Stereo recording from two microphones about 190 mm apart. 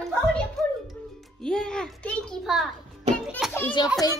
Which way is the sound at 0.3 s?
Centre (ahead or behind).